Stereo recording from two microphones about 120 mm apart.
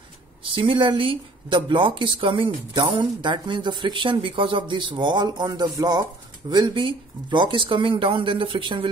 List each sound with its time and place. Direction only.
0.4 s speech: 45° right (ahead or behind)